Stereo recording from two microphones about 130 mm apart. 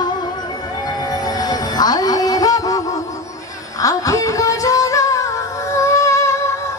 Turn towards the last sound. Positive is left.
turn(degrees=25)  # may be behind; listen again after turning